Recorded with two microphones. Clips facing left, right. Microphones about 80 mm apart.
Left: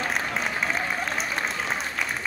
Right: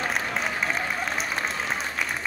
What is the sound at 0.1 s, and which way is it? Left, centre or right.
Applause, centre.